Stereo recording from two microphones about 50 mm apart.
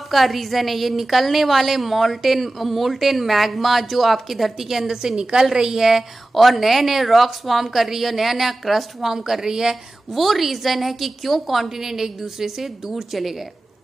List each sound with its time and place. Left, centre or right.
0.1 s a woman's voice: centre